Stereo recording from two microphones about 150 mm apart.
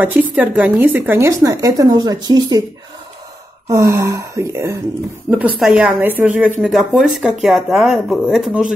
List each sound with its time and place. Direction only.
0.0 s speech: 10° right (ahead or behind); by 2.6 s 25° right (ahead or behind)
3.6 s speech: 20° right (ahead or behind)
5.3 s speech: 10° right (ahead or behind)